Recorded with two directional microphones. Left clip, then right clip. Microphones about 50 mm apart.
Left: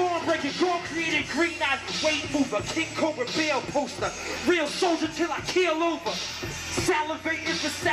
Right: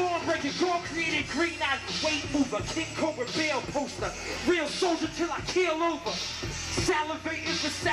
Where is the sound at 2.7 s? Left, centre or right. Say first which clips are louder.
Left 3 dB; left.